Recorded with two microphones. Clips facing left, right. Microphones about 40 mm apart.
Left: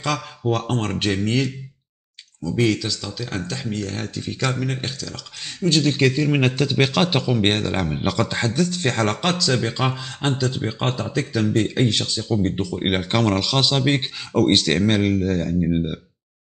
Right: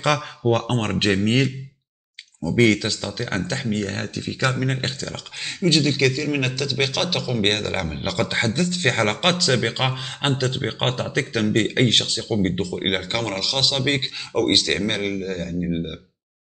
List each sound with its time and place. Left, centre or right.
0.0 s speech: right
5.9 s a man's voice: centre
6.4 s speech: left
7.4 s a man's voice: centre
7.7 s speech: centre
8.5 s speech: right
12.6 s speech: centre
13.1 s speech: centre
13.4 s a man's voice: centre
14.5 s speech: centre